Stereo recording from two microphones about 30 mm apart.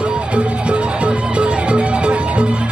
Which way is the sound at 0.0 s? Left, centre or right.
Right.